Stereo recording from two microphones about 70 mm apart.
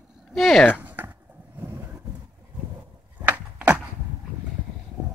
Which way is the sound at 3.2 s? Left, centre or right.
Right.